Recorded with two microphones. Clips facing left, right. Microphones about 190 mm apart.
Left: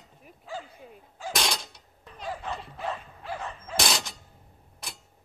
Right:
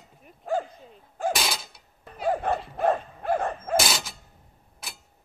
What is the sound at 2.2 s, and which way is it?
Dog, 55° right (ahead or behind).